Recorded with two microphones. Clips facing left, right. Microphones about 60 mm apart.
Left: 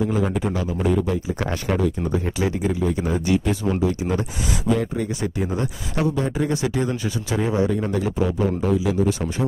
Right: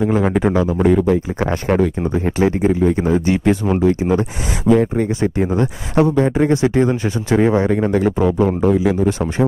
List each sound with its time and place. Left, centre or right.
0.0 s speech: right